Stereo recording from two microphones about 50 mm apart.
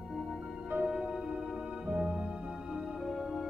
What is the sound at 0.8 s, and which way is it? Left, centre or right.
Music, centre.